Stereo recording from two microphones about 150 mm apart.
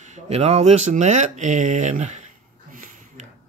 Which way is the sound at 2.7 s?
65° right (ahead or behind).